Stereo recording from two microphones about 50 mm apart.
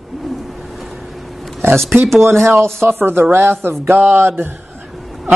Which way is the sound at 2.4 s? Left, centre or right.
Right.